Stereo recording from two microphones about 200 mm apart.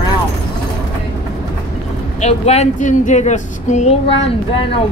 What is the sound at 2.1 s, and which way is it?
Speech, 35° left (ahead or behind).